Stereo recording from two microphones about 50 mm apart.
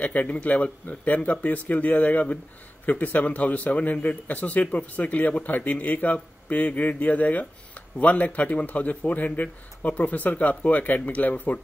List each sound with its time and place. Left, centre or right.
0.0 s a man's voice: left